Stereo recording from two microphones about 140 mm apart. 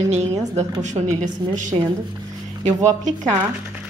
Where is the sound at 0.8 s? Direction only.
60° right (ahead or behind).